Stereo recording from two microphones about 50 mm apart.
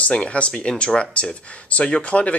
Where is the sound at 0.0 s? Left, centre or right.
Left.